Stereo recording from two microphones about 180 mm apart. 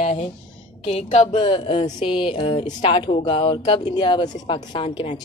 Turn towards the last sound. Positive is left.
turn(degrees=30)  # may be behind; listen again after turning